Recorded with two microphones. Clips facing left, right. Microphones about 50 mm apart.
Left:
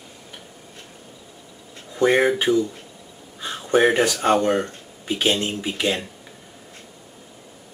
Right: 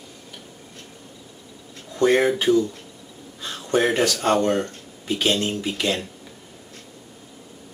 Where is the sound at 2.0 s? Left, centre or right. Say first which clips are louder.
Left 1 dB; centre.